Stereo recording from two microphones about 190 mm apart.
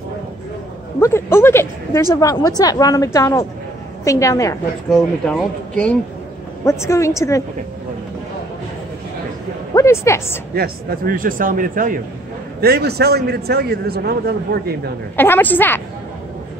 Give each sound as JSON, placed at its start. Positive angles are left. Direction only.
{"t": 0.9, "sound": "a woman's voice", "side_deg": 15}
{"t": 4.8, "sound": "a woman's voice", "side_deg": 0}
{"t": 9.8, "sound": "a woman's voice", "side_deg": 15}
{"t": 10.5, "sound": "a man's voice", "side_deg": -50}
{"t": 12.5, "sound": "a man's voice", "side_deg": -55}
{"t": 15.1, "sound": "a woman's voice", "side_deg": 10}